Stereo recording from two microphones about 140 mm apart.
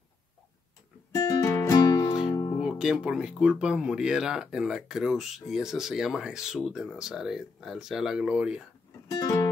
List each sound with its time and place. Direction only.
1.1 s music: 20° left (ahead or behind)
2.6 s speech: 5° right (ahead or behind)
9.1 s music: 25° left (ahead or behind)